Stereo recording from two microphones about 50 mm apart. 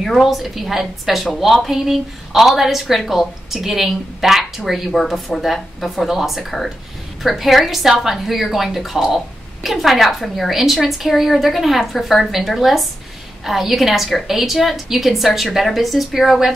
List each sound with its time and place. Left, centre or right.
0.0 s a woman's voice: centre